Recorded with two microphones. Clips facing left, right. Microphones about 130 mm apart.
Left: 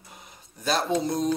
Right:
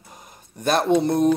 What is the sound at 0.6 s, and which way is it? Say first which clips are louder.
Speech: right 6 dB; 55° right (ahead or behind).